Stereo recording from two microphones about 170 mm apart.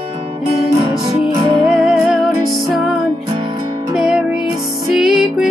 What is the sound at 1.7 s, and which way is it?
Music, centre (ahead or behind).